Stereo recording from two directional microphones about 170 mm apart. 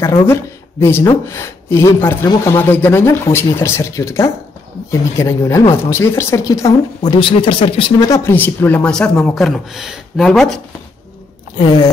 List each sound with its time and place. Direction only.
0.3 s a woman's voice: 15° left (ahead or behind); by 7.8 s 35° left (ahead or behind)
8.0 s speech: 15° left (ahead or behind)
11.5 s speech: 25° left (ahead or behind)